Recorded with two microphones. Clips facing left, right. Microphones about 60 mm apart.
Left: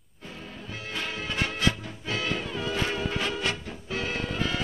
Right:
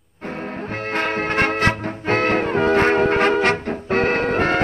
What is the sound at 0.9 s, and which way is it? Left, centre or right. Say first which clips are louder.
Music: right 12 dB; right.